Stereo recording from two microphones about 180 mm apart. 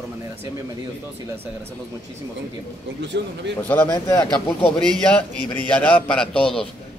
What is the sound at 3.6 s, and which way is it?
A man's voice, 10° left (ahead or behind).